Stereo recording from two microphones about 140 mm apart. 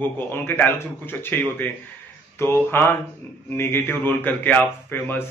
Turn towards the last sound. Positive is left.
turn(degrees=15)  # may be behind; listen again after turning